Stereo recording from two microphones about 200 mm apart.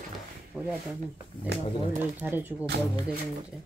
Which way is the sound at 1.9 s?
10° right (ahead or behind).